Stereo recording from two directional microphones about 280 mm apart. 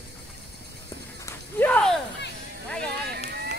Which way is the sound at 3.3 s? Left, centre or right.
Right.